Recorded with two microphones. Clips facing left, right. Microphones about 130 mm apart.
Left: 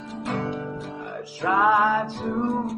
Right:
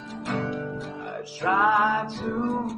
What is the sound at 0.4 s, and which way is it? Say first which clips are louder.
Music: left 1 dB; 55° left (ahead or behind).